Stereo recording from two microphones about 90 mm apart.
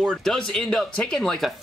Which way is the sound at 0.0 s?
5° left (ahead or behind).